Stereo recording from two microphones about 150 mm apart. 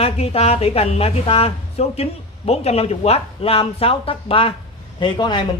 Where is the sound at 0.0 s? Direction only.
45° left (ahead or behind).